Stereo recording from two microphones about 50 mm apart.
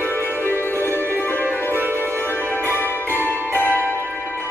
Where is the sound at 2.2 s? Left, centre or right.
Left.